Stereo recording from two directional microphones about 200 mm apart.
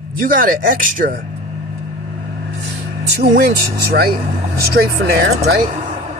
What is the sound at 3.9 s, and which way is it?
Speech, 50° right (ahead or behind).